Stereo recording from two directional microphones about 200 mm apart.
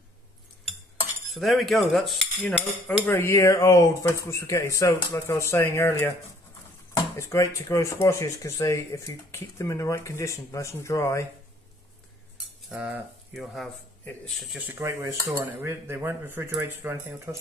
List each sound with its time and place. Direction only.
1.3 s cutlery: centre (ahead or behind)
3.1 s speech: 10° left (ahead or behind)
7.2 s speech: 15° left (ahead or behind)
12.6 s speech: 5° right (ahead or behind)
14.7 s cutlery: 15° right (ahead or behind)